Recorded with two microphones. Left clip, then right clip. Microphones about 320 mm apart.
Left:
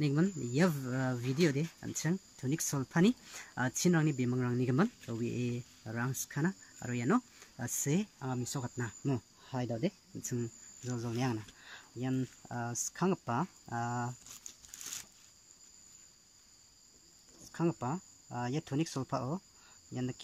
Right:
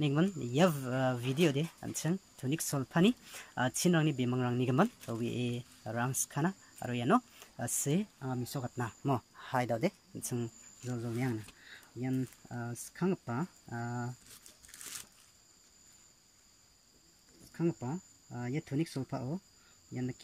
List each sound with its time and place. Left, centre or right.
0.0 s speech: centre
17.8 s speech: centre
19.9 s speech: left